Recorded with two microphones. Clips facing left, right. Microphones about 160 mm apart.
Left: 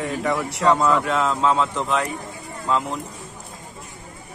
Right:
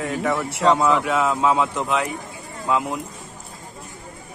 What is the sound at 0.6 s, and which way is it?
A man's voice, 15° right (ahead or behind).